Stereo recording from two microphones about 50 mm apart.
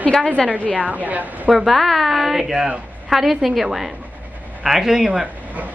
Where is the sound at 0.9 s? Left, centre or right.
Right.